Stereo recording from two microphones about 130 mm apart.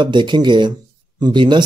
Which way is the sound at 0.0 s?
35° right (ahead or behind).